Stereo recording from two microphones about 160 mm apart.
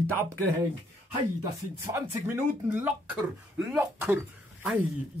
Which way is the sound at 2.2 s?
10° right (ahead or behind).